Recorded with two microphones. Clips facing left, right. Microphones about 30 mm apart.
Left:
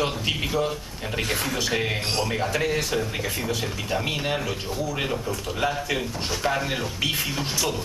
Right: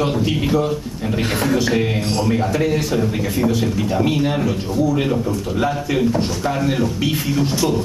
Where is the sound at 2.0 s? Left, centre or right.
Centre.